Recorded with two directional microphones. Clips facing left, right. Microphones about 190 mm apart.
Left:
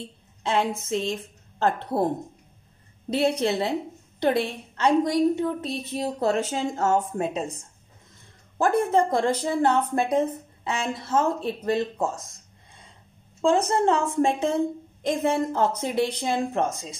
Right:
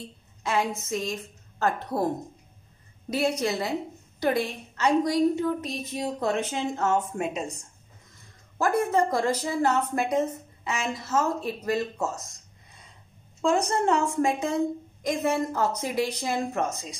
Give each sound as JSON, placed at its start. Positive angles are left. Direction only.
{"t": 0.4, "sound": "a woman's voice", "side_deg": 25}
{"t": 3.1, "sound": "a woman's voice", "side_deg": 30}
{"t": 5.9, "sound": "a woman's voice", "side_deg": 40}
{"t": 8.5, "sound": "a woman's voice", "side_deg": 30}
{"t": 13.4, "sound": "a woman's voice", "side_deg": 25}